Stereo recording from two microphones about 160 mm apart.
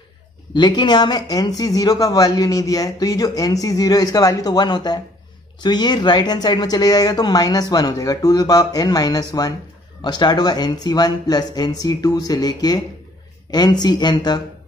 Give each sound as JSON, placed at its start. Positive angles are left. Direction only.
{"t": 0.6, "sound": "a woman's voice", "side_deg": 25}